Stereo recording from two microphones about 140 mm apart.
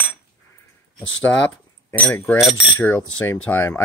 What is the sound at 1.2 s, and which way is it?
Cutlery, 10° left (ahead or behind).